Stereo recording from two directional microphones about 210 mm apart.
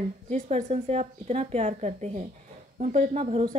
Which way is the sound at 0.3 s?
30° right (ahead or behind).